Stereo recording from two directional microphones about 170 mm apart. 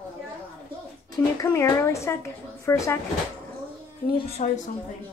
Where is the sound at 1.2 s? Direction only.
15° left (ahead or behind).